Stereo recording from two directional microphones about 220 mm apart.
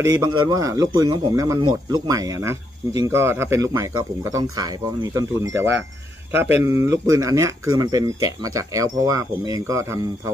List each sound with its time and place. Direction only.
0.0 s speech: 15° right (ahead or behind)